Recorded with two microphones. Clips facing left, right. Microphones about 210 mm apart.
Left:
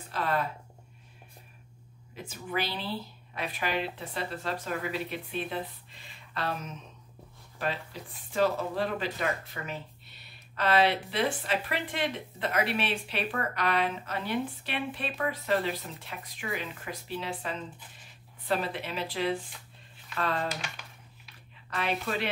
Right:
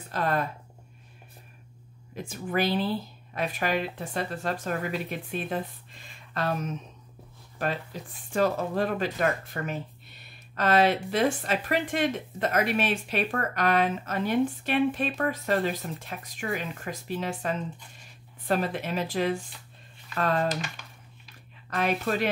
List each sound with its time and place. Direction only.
0.1 s a woman's voice: 45° right (ahead or behind)
2.1 s a woman's voice: 45° right (ahead or behind)
21.6 s a woman's voice: 45° right (ahead or behind)